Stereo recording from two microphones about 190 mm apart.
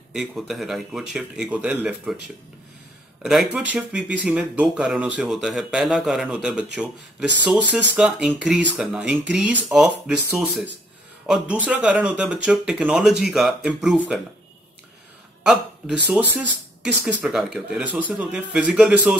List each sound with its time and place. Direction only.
0.1 s speech: centre (ahead or behind)
3.2 s speech: 5° right (ahead or behind)
15.4 s speech: 5° right (ahead or behind)